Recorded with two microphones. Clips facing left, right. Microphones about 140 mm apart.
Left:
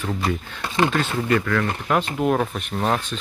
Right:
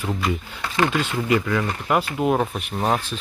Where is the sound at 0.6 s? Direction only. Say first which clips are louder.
Left 1 dB; 20° left (ahead or behind).